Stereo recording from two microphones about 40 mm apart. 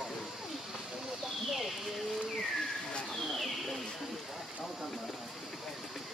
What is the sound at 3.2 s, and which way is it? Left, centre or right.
Bird, centre.